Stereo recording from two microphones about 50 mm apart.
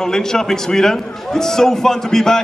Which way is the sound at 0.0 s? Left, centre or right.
Centre.